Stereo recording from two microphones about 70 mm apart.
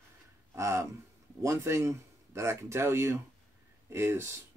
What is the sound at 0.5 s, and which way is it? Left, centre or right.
Speech, right.